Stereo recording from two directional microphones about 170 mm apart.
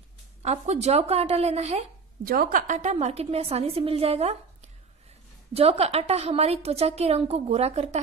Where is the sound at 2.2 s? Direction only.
55° right (ahead or behind).